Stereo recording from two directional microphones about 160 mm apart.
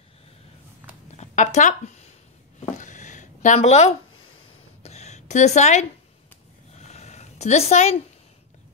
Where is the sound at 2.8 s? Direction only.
50° left (ahead or behind).